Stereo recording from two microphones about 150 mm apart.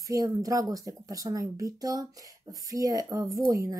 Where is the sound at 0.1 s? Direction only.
25° right (ahead or behind).